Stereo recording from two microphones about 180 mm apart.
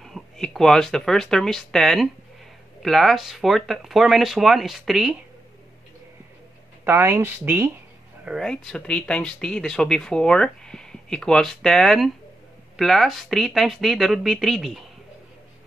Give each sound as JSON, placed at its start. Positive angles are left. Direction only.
{"t": 0.0, "sound": "speech", "side_deg": 0}
{"t": 6.8, "sound": "speech", "side_deg": -10}
{"t": 8.3, "sound": "speech", "side_deg": 5}